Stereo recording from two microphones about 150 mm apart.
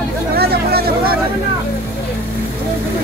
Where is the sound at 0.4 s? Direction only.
90° right.